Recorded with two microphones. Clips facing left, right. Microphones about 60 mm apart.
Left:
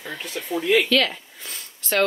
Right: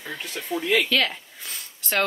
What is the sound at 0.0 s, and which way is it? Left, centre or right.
Speech, centre.